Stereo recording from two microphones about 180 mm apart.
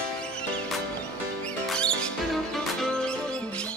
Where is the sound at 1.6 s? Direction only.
5° left (ahead or behind).